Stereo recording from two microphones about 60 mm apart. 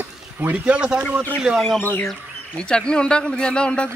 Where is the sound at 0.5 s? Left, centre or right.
Centre.